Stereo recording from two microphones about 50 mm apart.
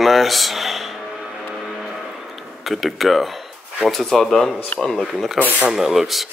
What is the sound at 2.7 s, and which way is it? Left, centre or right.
Speech, centre.